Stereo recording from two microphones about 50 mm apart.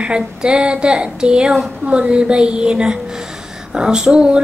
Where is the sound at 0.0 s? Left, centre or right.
Centre.